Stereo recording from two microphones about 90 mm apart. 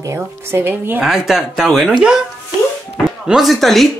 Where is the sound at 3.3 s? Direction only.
Centre (ahead or behind).